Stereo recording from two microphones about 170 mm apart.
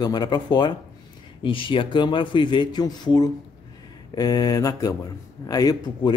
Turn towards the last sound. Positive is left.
turn(degrees=25)  # may be behind; listen again after turning